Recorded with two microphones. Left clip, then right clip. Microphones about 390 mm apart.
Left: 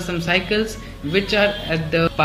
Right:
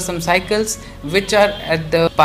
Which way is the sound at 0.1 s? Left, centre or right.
Centre.